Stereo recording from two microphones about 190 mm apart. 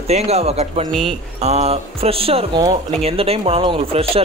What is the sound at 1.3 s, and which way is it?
Speech, 35° right (ahead or behind).